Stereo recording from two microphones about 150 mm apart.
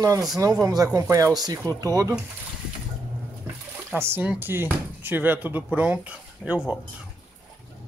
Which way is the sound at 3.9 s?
15° right (ahead or behind).